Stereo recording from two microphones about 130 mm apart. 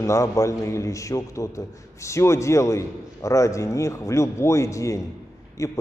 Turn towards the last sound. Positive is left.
turn(degrees=25)  # may be behind; listen again after turning